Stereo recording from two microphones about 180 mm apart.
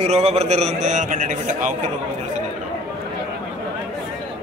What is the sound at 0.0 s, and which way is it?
A man's voice, 35° right (ahead or behind).